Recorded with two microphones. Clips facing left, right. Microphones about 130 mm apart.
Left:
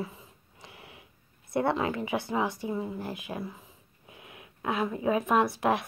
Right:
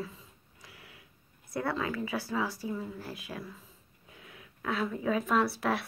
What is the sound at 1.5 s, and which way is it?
Speech, 25° left (ahead or behind).